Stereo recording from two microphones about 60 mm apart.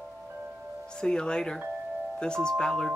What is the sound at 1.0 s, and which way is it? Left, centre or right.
Speech, centre.